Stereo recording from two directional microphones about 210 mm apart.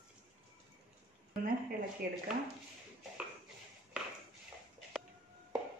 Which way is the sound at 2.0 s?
45° right (ahead or behind).